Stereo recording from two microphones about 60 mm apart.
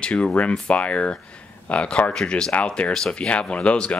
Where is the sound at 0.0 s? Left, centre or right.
Centre.